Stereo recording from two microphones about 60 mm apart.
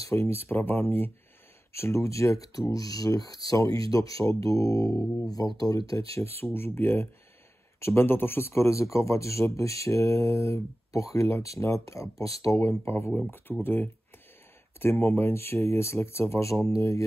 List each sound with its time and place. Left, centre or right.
0.1 s speech: left
1.7 s speech: left
2.7 s speech: left
4.2 s speech: left
6.2 s speech: left
12.5 s speech: left
13.5 s speech: right
14.8 s speech: left
16.6 s speech: left